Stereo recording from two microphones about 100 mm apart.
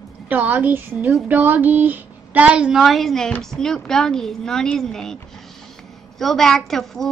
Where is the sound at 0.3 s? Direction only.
15° right (ahead or behind).